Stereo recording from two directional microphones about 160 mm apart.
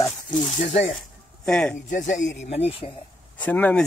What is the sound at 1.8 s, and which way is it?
Speech, 50° left (ahead or behind).